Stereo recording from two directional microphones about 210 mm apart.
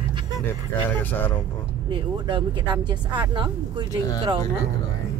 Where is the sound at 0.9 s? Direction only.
10° left (ahead or behind).